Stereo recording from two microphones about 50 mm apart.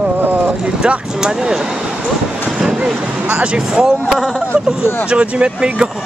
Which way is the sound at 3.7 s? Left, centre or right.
Centre.